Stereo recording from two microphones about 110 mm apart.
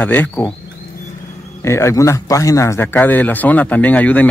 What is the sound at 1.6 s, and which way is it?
Speech, 25° left (ahead or behind).